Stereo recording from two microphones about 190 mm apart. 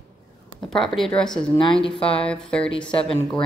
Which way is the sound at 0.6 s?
Centre (ahead or behind).